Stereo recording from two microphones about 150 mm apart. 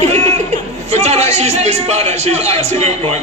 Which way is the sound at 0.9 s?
45° right (ahead or behind).